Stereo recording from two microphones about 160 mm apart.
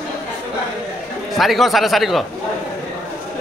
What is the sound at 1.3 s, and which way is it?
Speech, centre (ahead or behind).